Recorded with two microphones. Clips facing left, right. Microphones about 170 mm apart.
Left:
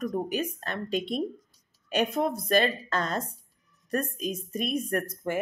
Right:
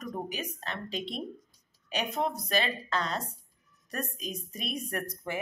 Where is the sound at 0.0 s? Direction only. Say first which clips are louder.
Left 7 dB; 50° left (ahead or behind).